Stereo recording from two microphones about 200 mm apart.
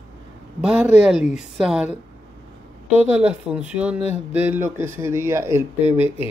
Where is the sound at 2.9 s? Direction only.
5° right (ahead or behind).